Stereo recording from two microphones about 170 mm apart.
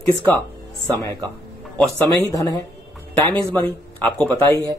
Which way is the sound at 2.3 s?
20° left (ahead or behind).